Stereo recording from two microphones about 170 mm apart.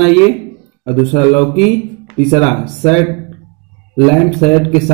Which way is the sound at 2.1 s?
40° left (ahead or behind).